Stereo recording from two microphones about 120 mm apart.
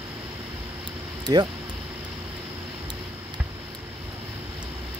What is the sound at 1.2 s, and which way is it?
Speech, 35° right (ahead or behind).